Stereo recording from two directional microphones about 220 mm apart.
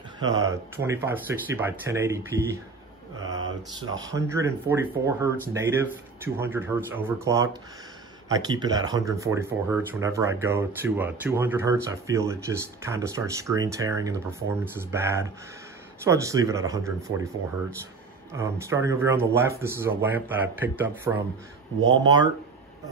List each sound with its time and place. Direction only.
0.2 s speech: 15° right (ahead or behind)
3.9 s speech: 15° right (ahead or behind)
21.9 s speech: 20° right (ahead or behind)